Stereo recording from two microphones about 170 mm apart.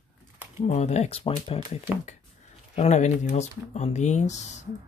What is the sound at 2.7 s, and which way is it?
Speech, 40° left (ahead or behind).